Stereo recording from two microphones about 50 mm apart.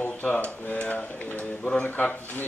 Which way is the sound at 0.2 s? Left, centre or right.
Left.